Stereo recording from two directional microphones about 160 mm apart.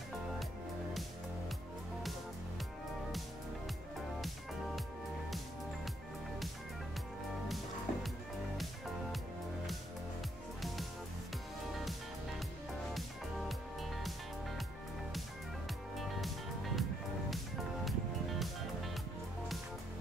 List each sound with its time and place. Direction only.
7.4 s music: centre (ahead or behind)
13.5 s music: centre (ahead or behind)
16.0 s music: centre (ahead or behind)
17.8 s music: centre (ahead or behind)